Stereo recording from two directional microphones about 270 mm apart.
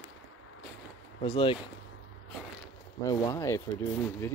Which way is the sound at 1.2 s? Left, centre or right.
Centre.